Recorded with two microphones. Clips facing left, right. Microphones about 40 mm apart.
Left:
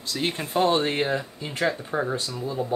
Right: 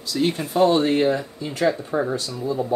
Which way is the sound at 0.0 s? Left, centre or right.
Left.